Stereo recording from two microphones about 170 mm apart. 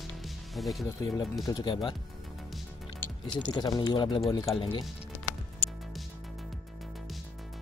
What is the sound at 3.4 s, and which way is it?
Speech, 25° left (ahead or behind).